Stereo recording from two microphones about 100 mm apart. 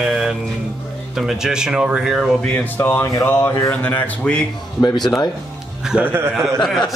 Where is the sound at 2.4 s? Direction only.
15° left (ahead or behind).